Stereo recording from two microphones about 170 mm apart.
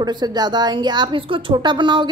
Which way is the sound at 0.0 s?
25° right (ahead or behind).